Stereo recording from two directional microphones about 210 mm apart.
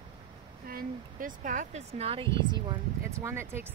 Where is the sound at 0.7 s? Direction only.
40° right (ahead or behind); by 3.7 s 10° right (ahead or behind).